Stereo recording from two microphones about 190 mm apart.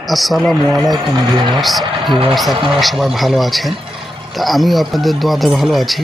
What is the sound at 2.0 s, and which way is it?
Speech, 30° right (ahead or behind).